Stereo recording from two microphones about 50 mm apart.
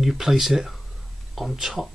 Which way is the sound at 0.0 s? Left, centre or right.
Centre.